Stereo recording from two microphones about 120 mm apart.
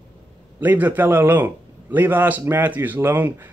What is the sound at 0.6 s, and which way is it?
Speech, 15° right (ahead or behind).